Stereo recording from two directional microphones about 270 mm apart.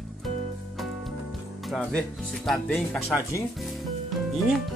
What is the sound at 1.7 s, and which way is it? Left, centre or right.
Speech, centre.